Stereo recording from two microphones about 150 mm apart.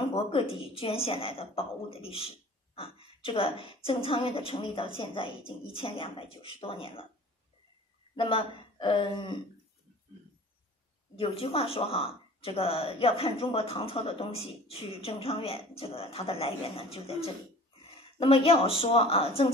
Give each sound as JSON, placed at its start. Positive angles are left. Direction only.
{"t": 0.1, "sound": "a woman's voice", "side_deg": 40}
{"t": 8.2, "sound": "a woman's voice", "side_deg": 35}
{"t": 11.1, "sound": "a woman's voice", "side_deg": 40}